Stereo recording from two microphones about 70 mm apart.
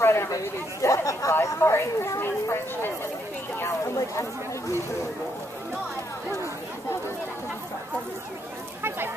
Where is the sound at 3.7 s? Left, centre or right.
Left.